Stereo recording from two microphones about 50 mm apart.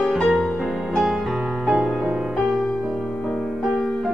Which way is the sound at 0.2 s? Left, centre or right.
Centre.